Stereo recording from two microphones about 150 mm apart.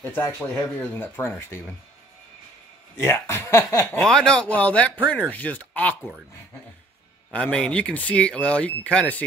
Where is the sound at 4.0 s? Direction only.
5° left (ahead or behind).